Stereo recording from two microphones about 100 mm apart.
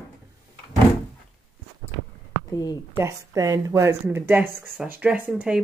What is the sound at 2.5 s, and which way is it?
Speech, 45° left (ahead or behind).